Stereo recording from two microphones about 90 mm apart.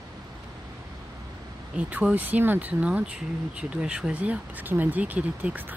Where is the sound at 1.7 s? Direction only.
15° right (ahead or behind).